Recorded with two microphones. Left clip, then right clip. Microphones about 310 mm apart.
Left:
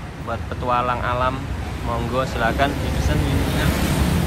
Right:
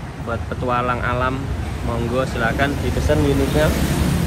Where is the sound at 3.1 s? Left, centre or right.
Centre.